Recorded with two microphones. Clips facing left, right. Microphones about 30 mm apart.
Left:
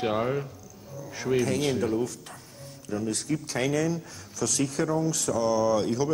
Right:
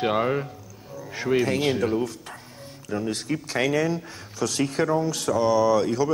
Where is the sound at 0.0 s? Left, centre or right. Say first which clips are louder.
Right 4 dB; right.